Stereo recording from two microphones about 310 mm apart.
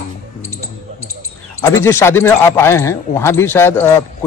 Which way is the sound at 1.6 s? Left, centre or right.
Centre.